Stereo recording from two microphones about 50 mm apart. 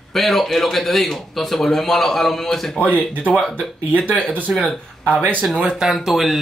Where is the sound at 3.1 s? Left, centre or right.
Right.